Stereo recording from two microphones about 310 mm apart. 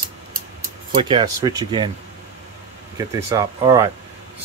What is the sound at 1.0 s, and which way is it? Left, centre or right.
Speech, centre.